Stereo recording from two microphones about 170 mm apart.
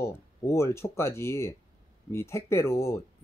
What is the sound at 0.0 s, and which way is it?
Speech, 15° left (ahead or behind).